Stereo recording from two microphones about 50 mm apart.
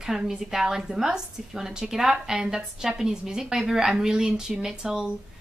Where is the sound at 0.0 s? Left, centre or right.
Centre.